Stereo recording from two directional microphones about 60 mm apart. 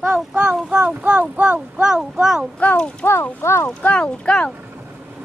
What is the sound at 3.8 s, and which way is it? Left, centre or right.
Speech, left.